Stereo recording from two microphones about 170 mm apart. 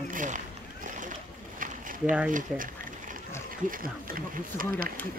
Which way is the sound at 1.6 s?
50° right (ahead or behind).